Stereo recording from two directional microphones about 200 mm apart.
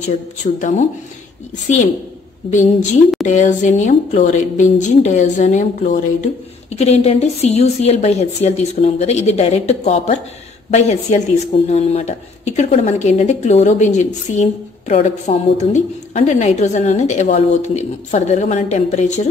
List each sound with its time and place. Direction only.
0.0 s speech: 35° left (ahead or behind)
3.3 s speech: 35° left (ahead or behind)